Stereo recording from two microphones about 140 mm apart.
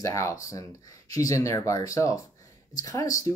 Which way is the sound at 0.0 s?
20° left (ahead or behind).